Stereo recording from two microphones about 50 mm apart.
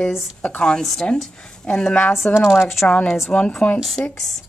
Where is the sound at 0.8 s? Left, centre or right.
Centre.